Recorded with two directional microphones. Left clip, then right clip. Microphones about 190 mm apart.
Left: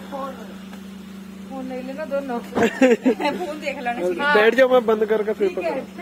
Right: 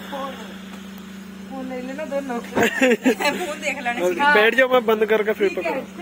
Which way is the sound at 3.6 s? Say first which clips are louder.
Right 1 dB; 40° left (ahead or behind).